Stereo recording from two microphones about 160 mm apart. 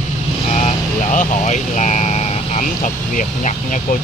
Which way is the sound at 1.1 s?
50° left (ahead or behind).